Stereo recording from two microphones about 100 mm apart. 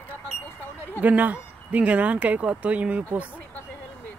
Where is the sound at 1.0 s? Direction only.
15° right (ahead or behind).